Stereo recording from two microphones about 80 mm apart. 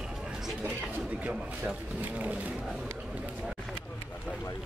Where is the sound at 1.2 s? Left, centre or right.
Centre.